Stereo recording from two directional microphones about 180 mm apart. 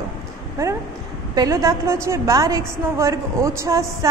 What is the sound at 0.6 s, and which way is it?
A woman's voice, 15° right (ahead or behind).